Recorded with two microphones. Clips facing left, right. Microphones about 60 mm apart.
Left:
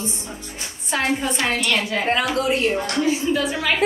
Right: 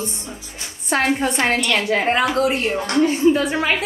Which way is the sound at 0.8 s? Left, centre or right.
Right.